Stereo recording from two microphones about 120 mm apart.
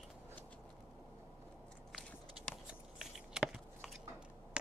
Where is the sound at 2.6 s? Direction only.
5° right (ahead or behind).